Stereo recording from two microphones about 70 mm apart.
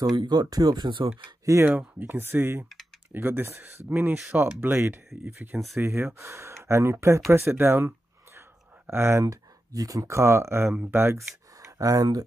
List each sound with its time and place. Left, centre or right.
0.0 s speech: right
1.5 s speech: right
2.0 s speech: right
8.4 s a sound: right
9.2 s speech: right
11.1 s speech: right